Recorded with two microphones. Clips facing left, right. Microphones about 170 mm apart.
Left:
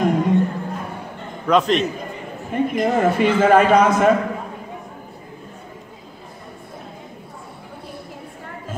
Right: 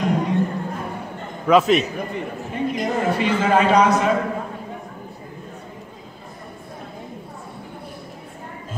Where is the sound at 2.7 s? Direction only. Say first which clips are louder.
Left 4 dB; 50° left (ahead or behind).